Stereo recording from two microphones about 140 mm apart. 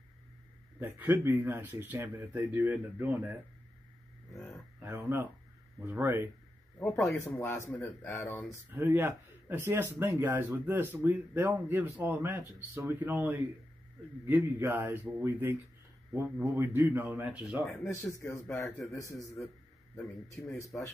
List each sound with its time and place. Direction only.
0.7 s speech: 15° right (ahead or behind)
4.7 s speech: 15° right (ahead or behind)
7.1 s speech: 10° left (ahead or behind)
8.7 s speech: 15° right (ahead or behind)
17.8 s speech: 20° left (ahead or behind)
18.6 s a man's voice: centre (ahead or behind)
18.9 s speech: 20° left (ahead or behind)
19.2 s a man's voice: centre (ahead or behind)
20.5 s speech: 20° left (ahead or behind)